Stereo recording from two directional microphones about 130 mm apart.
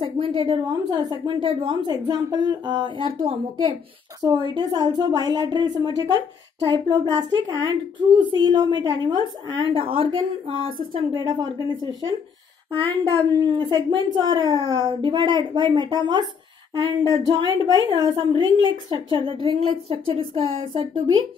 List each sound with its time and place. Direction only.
0.0 s a woman's voice: 40° right (ahead or behind)
13.4 s a woman's voice: 35° right (ahead or behind)